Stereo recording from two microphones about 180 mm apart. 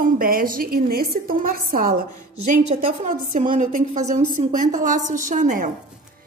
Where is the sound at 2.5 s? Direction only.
35° right (ahead or behind).